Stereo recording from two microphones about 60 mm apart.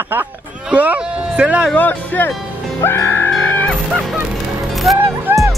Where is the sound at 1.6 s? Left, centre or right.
Left.